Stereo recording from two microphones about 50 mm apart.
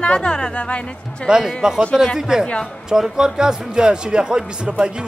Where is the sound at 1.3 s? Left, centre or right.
Centre.